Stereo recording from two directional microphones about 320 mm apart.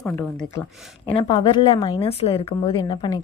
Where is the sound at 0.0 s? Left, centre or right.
Centre.